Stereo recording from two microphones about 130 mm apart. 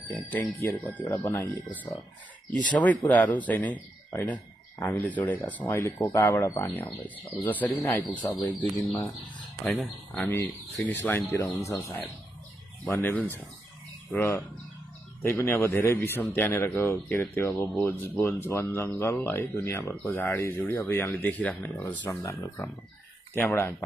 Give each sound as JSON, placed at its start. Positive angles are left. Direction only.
{"t": 0.3, "sound": "speech", "side_deg": 15}
{"t": 9.7, "sound": "speech", "side_deg": 10}
{"t": 12.8, "sound": "speech", "side_deg": 10}